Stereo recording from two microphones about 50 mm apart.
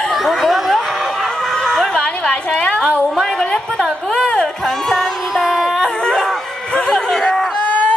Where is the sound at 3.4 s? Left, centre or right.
Centre.